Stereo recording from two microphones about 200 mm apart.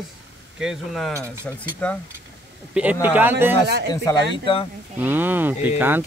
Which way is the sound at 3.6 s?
55° right (ahead or behind).